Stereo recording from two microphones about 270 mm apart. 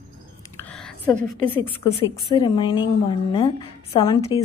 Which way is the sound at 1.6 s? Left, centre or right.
Centre.